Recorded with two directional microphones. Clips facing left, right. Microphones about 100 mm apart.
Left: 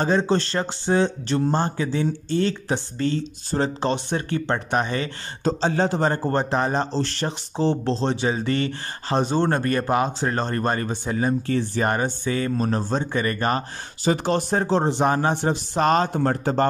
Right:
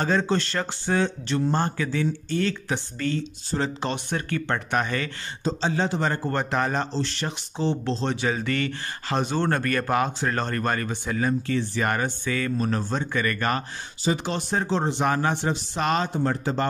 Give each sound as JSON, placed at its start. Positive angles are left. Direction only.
{"t": 0.0, "sound": "speech", "side_deg": 25}
{"t": 5.4, "sound": "a man's voice", "side_deg": 50}
{"t": 6.9, "sound": "speech", "side_deg": 45}
{"t": 11.5, "sound": "a man's voice", "side_deg": 40}
{"t": 11.9, "sound": "a man's voice", "side_deg": 30}
{"t": 14.0, "sound": "a man's voice", "side_deg": 45}